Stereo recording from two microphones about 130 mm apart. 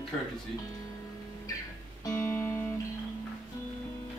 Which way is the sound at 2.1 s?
20° left (ahead or behind).